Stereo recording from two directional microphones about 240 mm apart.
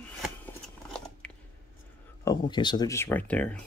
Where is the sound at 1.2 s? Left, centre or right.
Centre.